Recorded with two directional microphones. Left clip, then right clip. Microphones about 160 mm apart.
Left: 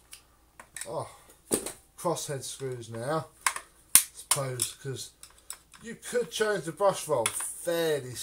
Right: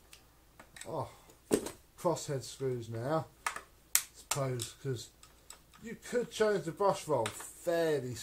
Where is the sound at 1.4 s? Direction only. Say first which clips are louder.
Even; 30° right (ahead or behind).